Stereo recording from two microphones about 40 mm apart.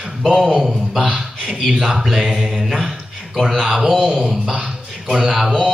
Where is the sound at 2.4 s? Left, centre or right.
Centre.